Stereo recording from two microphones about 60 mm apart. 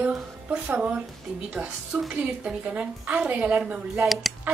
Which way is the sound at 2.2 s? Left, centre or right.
Right.